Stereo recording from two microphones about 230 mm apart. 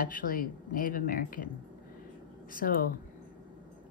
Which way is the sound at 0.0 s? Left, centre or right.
Left.